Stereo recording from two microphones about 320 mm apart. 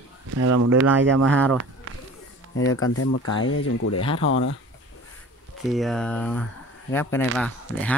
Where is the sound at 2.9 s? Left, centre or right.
Left.